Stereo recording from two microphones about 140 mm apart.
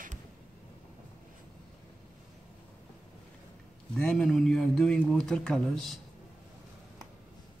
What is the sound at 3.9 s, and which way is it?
A man's voice, 5° left (ahead or behind).